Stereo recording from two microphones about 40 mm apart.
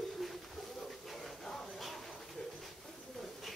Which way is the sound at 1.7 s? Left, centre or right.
Centre.